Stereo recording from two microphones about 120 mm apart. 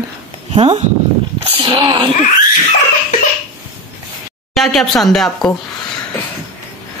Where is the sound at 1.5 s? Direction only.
45° right (ahead or behind).